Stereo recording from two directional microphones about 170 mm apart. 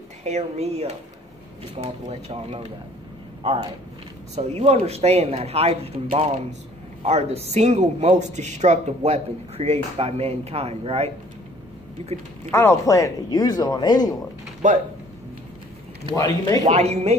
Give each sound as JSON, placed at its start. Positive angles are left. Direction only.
{"t": 0.2, "sound": "speech", "side_deg": -40}
{"t": 4.4, "sound": "speech", "side_deg": -35}
{"t": 12.4, "sound": "speech", "side_deg": 15}
{"t": 14.6, "sound": "speech", "side_deg": -45}
{"t": 16.1, "sound": "speech", "side_deg": 20}
{"t": 16.6, "sound": "speech", "side_deg": -40}